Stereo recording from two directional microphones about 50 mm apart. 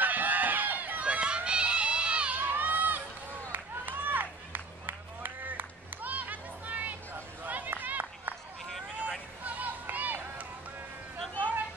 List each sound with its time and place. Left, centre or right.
0.0 s run: right
1.0 s a sound: right
2.4 s run: right
3.5 s music: right
7.4 s run: right
9.4 s a sound: right